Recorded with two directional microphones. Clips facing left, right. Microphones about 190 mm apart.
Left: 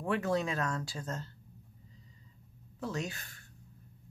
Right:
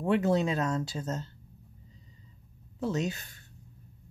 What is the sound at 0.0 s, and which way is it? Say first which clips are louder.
Speech: right 5 dB; 20° right (ahead or behind).